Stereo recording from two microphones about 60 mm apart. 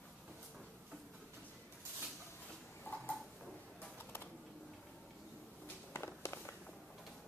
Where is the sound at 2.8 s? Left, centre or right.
Left.